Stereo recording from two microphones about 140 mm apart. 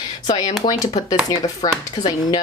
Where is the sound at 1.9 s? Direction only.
30° left (ahead or behind).